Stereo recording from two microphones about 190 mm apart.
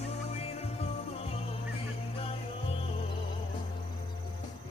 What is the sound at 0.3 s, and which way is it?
Music, 35° left (ahead or behind).